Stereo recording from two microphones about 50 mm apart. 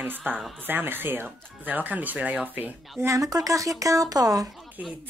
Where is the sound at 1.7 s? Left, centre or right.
Right.